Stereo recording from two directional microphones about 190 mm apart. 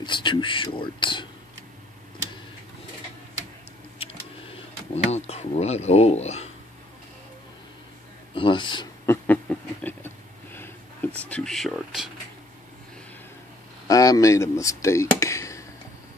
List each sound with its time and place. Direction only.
0.0 s speech: 25° left (ahead or behind)
4.9 s speech: 35° left (ahead or behind)
8.4 s speech: 25° left (ahead or behind)
9.0 s a sound: 10° left (ahead or behind)
13.8 s speech: 20° left (ahead or behind)